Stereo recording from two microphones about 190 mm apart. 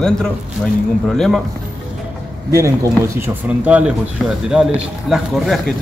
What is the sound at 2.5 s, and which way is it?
A man's voice, 15° right (ahead or behind).